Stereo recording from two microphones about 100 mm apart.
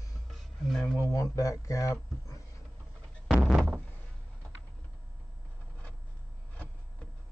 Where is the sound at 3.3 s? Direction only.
15° right (ahead or behind).